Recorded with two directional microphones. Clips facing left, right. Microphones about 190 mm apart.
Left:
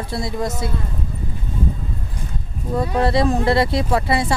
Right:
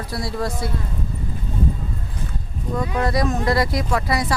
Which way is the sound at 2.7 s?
30° left (ahead or behind).